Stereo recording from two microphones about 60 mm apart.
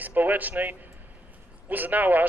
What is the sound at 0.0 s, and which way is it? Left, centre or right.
A man's voice, right.